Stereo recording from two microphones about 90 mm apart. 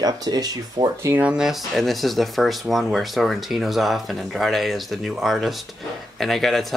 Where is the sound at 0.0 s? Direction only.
45° right (ahead or behind).